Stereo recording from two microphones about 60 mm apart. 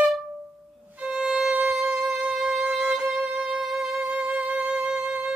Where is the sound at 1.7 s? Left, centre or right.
Centre.